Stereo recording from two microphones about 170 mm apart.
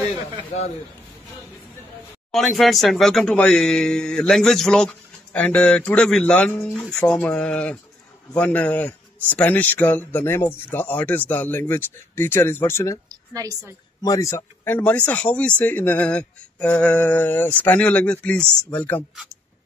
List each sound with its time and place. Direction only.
0.5 s speech: 40° left (ahead or behind)
2.3 s a man's voice: centre (ahead or behind); by 13.0 s 15° left (ahead or behind)
13.1 s a woman's voice: 20° right (ahead or behind)
14.0 s a man's voice: 20° left (ahead or behind)